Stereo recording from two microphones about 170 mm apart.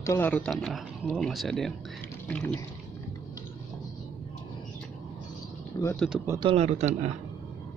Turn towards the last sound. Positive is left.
turn(degrees=-40)  # may be behind; listen again after turning